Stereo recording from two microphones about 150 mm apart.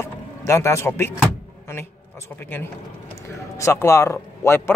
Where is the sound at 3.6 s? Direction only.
20° left (ahead or behind).